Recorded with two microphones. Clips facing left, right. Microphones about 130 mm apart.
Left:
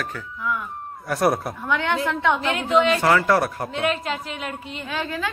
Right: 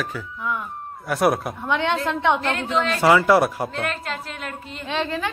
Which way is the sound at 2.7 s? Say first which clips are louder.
Left 6 dB; 5° left (ahead or behind).